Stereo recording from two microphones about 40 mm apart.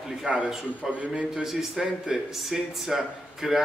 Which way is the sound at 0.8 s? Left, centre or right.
Right.